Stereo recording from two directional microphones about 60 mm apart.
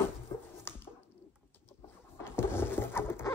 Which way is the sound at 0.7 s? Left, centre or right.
Left.